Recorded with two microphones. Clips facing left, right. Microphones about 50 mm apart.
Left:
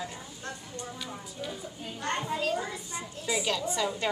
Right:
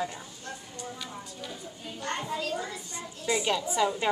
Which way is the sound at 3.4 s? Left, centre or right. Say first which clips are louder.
Right 4 dB; centre.